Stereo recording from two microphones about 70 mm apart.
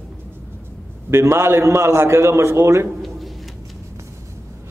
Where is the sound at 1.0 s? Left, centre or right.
Right.